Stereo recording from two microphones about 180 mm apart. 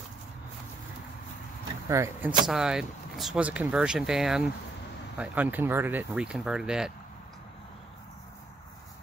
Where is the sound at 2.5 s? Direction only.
5° right (ahead or behind).